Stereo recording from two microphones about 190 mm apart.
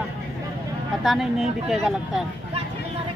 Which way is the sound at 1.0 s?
Centre (ahead or behind).